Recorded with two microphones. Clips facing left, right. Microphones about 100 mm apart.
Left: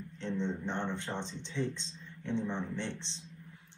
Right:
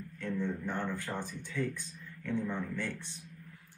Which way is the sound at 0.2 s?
25° left (ahead or behind).